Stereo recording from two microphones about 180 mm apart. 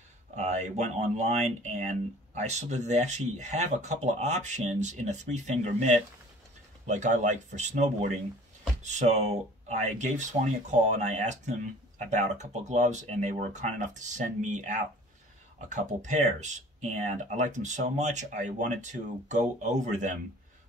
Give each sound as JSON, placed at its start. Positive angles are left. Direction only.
{"t": 0.4, "sound": "speech", "side_deg": -40}